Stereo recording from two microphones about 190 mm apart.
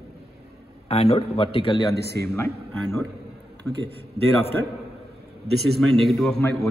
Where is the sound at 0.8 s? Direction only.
30° left (ahead or behind).